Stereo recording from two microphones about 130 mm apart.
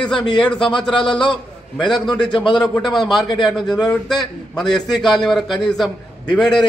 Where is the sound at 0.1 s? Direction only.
35° left (ahead or behind).